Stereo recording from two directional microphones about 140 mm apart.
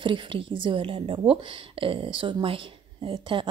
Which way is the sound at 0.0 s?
35° right (ahead or behind).